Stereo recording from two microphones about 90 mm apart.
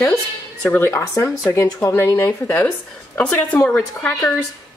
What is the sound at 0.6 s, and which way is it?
Speech, 25° left (ahead or behind).